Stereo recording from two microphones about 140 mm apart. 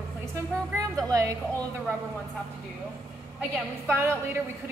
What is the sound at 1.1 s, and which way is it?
Speech, 25° right (ahead or behind).